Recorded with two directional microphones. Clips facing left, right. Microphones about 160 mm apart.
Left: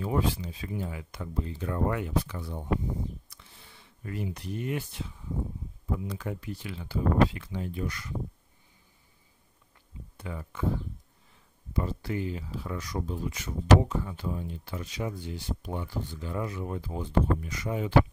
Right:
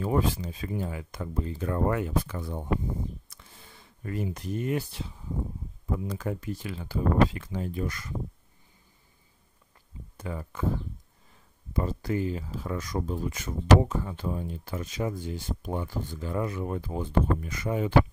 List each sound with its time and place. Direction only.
0.0 s speech: 45° right (ahead or behind)
3.3 s a sound: 45° right (ahead or behind)
5.9 s speech: 45° right (ahead or behind)
10.1 s speech: 40° right (ahead or behind)
11.7 s speech: 45° right (ahead or behind)